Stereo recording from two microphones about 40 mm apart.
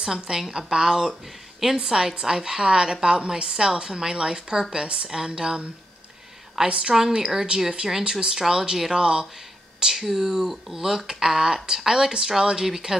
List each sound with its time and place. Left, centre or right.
0.0 s a woman's voice: centre
6.7 s a woman's voice: centre